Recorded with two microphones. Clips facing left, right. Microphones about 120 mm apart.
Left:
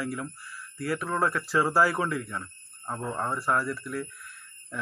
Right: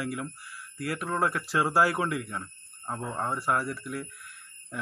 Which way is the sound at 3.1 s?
10° right (ahead or behind).